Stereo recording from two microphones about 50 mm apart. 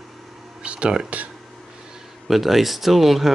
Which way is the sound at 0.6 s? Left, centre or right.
Right.